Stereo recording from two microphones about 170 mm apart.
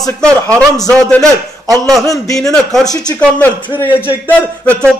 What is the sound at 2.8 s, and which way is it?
Speech, 20° left (ahead or behind).